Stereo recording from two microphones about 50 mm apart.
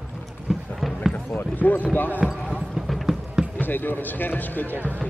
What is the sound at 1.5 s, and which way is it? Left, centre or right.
Speech, left.